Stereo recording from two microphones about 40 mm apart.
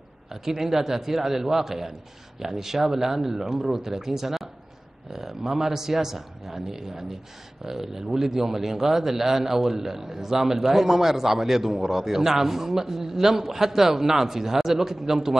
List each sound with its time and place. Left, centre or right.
0.3 s a man's voice: centre